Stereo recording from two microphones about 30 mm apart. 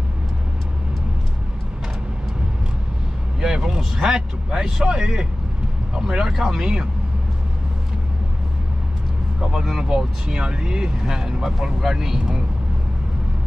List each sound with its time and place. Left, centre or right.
3.3 s vehicle: right
3.7 s speech: right
4.9 s speech: right
6.3 s speech: centre
9.4 s speech: right